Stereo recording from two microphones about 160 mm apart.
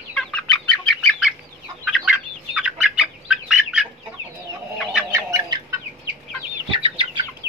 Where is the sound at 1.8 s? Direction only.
Centre (ahead or behind).